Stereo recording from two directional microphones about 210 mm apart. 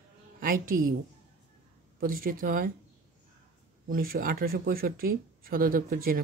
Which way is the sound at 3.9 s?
45° right (ahead or behind).